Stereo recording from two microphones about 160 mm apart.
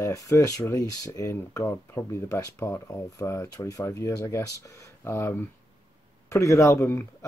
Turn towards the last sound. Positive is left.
turn(degrees=15)  # may be behind; listen again after turning